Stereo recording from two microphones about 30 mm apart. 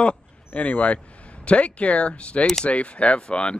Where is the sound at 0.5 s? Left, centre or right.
Left.